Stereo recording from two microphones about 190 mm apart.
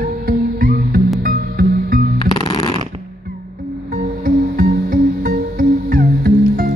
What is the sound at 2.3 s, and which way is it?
Music, 20° left (ahead or behind).